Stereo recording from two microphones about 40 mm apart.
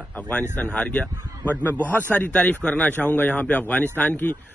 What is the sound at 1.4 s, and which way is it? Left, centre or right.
A man's voice, left.